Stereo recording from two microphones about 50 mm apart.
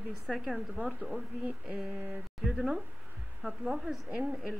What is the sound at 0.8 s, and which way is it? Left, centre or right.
Speech, right.